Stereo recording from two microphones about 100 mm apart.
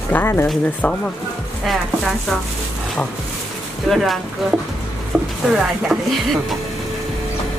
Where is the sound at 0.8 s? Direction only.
10° left (ahead or behind).